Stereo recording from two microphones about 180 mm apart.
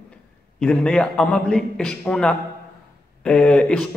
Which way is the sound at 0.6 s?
5° left (ahead or behind).